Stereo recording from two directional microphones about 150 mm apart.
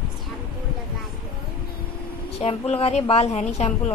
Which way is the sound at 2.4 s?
40° left (ahead or behind).